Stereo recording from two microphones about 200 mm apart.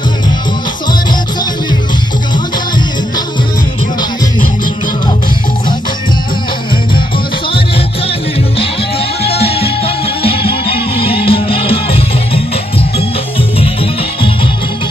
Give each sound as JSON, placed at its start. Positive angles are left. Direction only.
{"t": 9.2, "sound": "music", "side_deg": 30}
{"t": 11.0, "sound": "music", "side_deg": 25}